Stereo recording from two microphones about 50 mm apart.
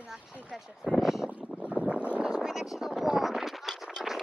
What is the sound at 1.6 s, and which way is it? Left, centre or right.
Boat, right.